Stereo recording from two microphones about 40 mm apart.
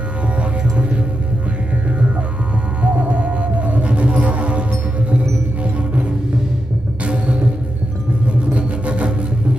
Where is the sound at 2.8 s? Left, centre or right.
Right.